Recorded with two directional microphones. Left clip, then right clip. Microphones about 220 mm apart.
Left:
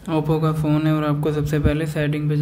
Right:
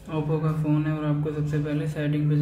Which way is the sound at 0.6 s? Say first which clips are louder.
Left 6 dB; 45° left (ahead or behind).